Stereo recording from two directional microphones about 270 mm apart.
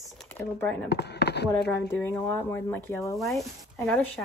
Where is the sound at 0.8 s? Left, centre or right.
Left.